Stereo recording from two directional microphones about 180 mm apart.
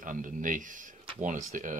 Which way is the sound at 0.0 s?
45° right (ahead or behind).